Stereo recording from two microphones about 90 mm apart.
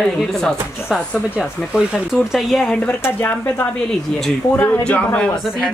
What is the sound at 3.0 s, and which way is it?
Speech, 25° left (ahead or behind).